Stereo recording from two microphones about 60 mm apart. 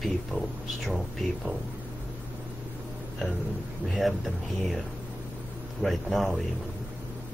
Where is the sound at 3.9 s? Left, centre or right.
Centre.